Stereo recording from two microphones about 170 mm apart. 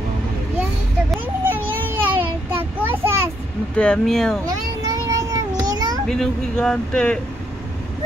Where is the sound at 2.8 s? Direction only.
15° right (ahead or behind).